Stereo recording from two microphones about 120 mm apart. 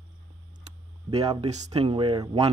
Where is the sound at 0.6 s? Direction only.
55° right (ahead or behind).